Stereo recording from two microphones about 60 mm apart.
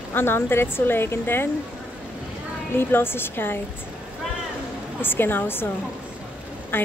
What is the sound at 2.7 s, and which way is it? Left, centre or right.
Speech, left.